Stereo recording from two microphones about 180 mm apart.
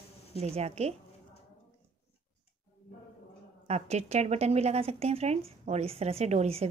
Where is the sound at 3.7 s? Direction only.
35° right (ahead or behind).